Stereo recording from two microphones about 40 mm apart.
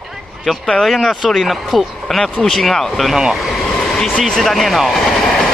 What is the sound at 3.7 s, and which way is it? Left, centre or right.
Vehicle, centre.